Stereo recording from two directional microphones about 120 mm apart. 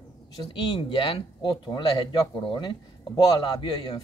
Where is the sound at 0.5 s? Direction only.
45° left (ahead or behind).